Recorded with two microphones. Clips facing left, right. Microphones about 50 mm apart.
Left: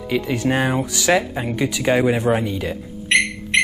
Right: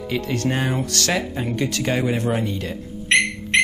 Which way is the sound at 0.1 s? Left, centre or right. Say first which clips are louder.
Left 3 dB; centre.